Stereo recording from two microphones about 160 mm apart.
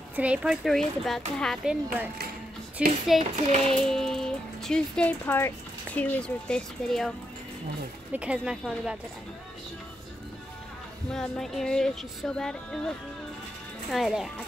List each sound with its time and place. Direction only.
0.1 s speech: 10° right (ahead or behind)
3.2 s child singing: 45° right (ahead or behind)
3.8 s speech: 5° left (ahead or behind)
8.1 s a woman's voice: 5° right (ahead or behind)
11.1 s speech: 5° left (ahead or behind)